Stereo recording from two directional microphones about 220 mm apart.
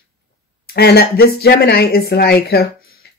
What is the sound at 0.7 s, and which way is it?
Speech, 45° left (ahead or behind).